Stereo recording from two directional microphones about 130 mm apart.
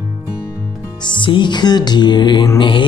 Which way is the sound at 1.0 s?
40° left (ahead or behind).